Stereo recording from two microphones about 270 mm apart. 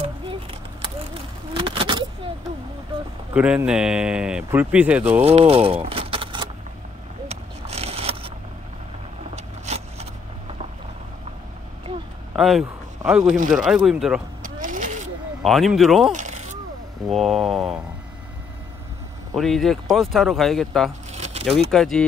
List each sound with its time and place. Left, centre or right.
1.5 s vehicle: centre
3.3 s speech: centre
5.2 s a sound: right
9.3 s vehicle: right
12.4 s speech: centre
14.4 s vehicle: right
15.4 s speech: centre
16.1 s a sound: right
17.1 s speech: centre
19.3 s speech: centre
21.1 s a sound: right
21.6 s speech: centre